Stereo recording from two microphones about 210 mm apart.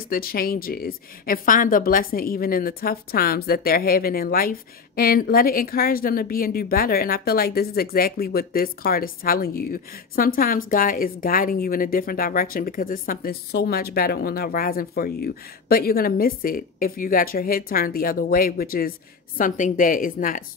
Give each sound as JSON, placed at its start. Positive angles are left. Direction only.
{"t": 0.1, "sound": "speech", "side_deg": 45}